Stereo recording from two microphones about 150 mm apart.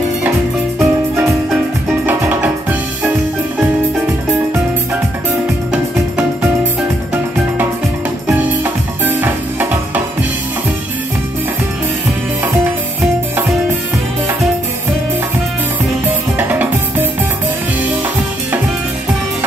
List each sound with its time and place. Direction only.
0.7 s music: 15° right (ahead or behind)
5.7 s music: 10° right (ahead or behind)
8.3 s music: 15° right (ahead or behind)
16.3 s music: 10° right (ahead or behind)